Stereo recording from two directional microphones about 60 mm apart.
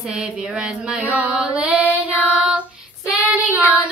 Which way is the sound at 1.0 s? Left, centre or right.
Right.